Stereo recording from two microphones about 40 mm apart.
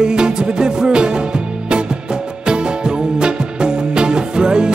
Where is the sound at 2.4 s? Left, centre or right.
Right.